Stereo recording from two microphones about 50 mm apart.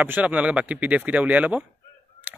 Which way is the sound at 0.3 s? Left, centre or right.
Right.